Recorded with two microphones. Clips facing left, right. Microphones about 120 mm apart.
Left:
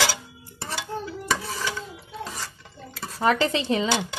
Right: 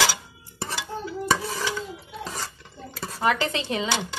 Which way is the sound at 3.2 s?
30° left (ahead or behind).